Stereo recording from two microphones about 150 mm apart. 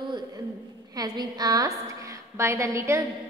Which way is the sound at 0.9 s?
25° right (ahead or behind).